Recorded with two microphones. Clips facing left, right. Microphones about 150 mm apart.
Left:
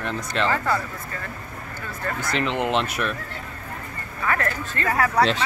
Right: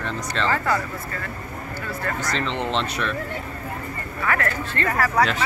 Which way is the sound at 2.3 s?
10° left (ahead or behind).